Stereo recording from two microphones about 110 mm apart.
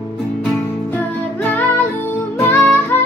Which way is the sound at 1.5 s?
15° left (ahead or behind).